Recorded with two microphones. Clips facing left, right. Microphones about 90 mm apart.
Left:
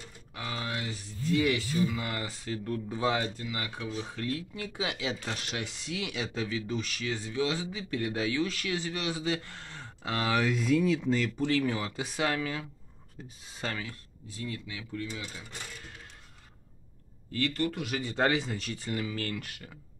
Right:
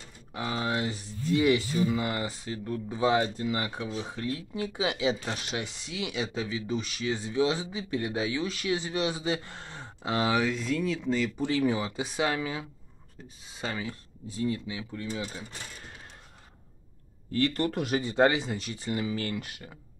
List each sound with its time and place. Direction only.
0.3 s speech: 25° right (ahead or behind); by 3.2 s 10° right (ahead or behind)
3.4 s speech: 25° right (ahead or behind)
5.6 s speech: 5° right (ahead or behind)
10.4 s speech: 5° left (ahead or behind)
11.2 s speech: 10° right (ahead or behind)
13.7 s speech: 25° right (ahead or behind)
15.0 s speech: 30° right (ahead or behind)
17.3 s speech: 35° right (ahead or behind)
18.0 s speech: 15° right (ahead or behind)